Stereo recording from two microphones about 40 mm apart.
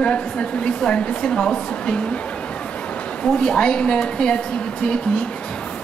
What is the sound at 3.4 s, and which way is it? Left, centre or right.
Speech, left.